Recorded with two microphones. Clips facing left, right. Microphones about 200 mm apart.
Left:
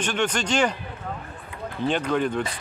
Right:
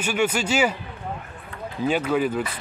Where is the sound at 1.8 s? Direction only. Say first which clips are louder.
Right 2 dB; 5° right (ahead or behind).